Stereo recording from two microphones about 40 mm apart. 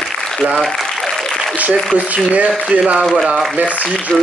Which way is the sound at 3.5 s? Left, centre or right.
Right.